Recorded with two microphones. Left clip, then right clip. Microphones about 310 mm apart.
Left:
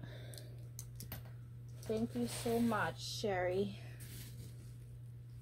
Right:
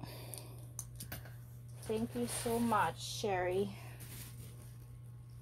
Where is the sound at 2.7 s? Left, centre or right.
Centre.